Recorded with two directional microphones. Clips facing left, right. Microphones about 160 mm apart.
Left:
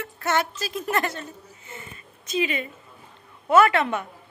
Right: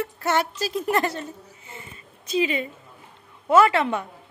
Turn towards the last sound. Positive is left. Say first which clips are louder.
# right 1 dB
turn(degrees=-25)  # may be behind; listen again after turning